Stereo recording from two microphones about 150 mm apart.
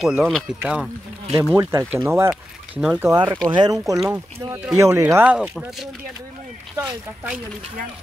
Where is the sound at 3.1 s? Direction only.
20° right (ahead or behind).